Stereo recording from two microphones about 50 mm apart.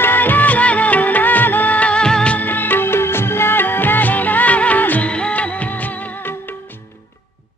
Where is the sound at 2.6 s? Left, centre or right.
Left.